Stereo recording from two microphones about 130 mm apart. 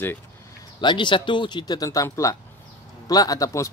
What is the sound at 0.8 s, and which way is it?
Speech, 40° left (ahead or behind).